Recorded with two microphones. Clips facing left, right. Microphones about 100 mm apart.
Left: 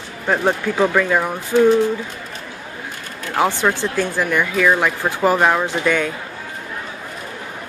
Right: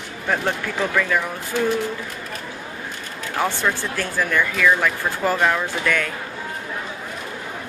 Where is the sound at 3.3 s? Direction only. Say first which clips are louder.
Left 5 dB; 15° left (ahead or behind).